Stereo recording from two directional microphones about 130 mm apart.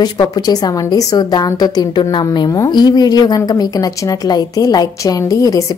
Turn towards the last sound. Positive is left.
turn(degrees=25)  # may be behind; listen again after turning